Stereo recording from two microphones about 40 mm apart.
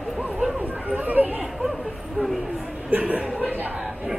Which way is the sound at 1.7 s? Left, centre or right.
Centre.